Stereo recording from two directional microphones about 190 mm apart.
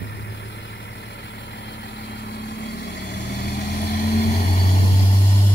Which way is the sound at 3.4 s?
55° left (ahead or behind).